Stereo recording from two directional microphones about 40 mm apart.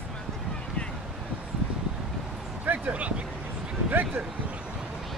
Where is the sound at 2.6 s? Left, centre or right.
Right.